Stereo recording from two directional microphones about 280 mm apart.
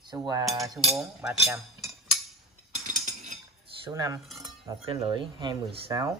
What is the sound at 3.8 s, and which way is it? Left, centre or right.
Speech, centre.